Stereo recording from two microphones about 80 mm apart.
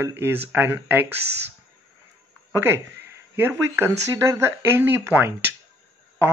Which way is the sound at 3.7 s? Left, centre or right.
Right.